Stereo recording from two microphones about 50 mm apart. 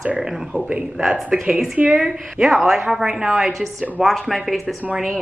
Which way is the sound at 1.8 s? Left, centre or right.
Right.